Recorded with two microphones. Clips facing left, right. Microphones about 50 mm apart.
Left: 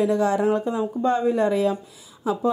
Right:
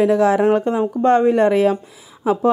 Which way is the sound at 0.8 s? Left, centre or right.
Right.